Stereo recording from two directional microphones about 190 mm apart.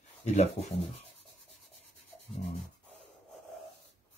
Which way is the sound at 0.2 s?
35° left (ahead or behind).